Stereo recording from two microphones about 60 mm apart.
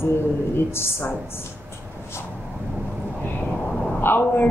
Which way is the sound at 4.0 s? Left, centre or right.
Left.